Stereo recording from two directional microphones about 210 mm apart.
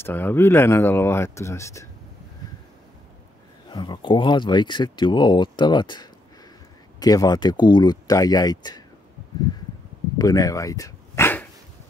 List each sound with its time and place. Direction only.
0.0 s speech: 10° left (ahead or behind)
3.7 s speech: 20° left (ahead or behind)
10.1 s bow-wow: 15° left (ahead or behind)